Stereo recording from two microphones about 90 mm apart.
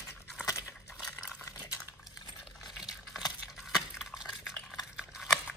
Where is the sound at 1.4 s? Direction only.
40° left (ahead or behind).